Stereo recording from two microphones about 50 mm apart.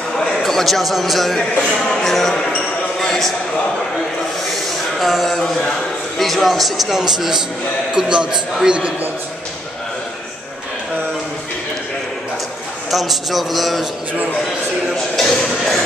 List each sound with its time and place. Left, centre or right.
0.4 s a man's voice: centre
1.6 s speech: centre
3.0 s a sound: centre
4.9 s a man's voice: centre; by 8.9 s right
12.9 s speech: centre
15.3 s speech: centre